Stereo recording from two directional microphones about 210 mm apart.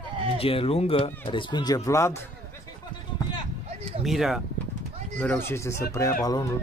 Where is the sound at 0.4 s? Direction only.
25° left (ahead or behind).